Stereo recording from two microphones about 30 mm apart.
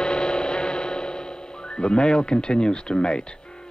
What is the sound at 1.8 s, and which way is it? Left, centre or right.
Speech, left.